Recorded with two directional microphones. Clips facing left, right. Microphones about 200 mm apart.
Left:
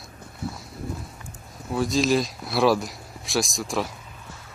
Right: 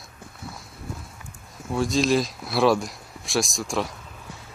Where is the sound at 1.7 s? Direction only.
Centre (ahead or behind).